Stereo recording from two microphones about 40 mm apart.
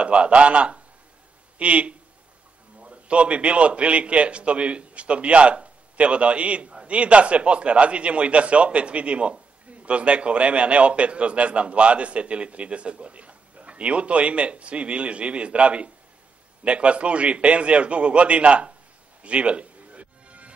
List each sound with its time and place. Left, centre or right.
0.0 s a man's voice: right
19.2 s music: right